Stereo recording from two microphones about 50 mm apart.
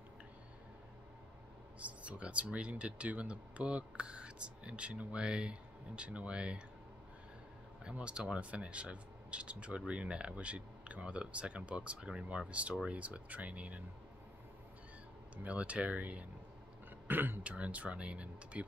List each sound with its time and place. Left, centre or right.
1.8 s speech: right
7.9 s speech: right
15.3 s speech: right
17.1 s speech: right
17.4 s speech: right